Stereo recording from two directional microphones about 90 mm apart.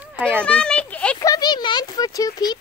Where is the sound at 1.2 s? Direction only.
45° left (ahead or behind).